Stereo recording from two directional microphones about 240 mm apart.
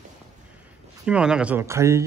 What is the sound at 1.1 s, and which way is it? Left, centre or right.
Speech, centre.